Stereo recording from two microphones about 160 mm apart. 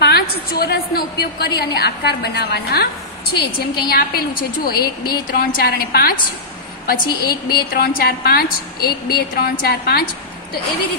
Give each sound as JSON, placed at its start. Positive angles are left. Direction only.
{"t": 0.0, "sound": "a woman's voice", "side_deg": 85}
{"t": 3.5, "sound": "a woman's voice", "side_deg": 70}